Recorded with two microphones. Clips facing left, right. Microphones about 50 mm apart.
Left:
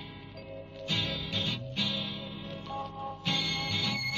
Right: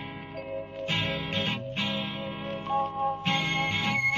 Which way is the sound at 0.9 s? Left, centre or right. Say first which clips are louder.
Right 3 dB; right.